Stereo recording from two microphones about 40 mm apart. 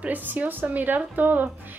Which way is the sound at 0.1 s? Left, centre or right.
Right.